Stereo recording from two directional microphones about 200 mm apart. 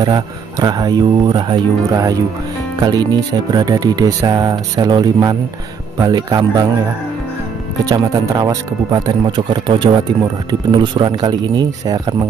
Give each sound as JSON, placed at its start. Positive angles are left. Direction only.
{"t": 0.0, "sound": "speech", "side_deg": -20}
{"t": 7.8, "sound": "speech", "side_deg": -20}